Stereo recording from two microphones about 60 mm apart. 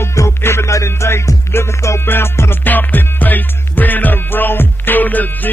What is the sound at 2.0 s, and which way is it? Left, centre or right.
Music, left.